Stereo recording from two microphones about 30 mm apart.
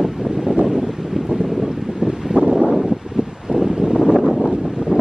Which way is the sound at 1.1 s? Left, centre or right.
Centre.